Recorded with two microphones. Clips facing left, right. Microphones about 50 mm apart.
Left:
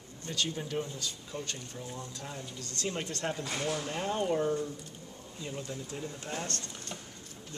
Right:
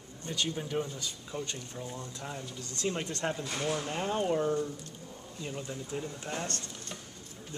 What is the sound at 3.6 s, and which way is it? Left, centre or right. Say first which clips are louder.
Speech: right 2 dB; centre.